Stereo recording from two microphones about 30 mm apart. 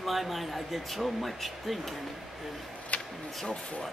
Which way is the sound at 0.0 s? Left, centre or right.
Centre.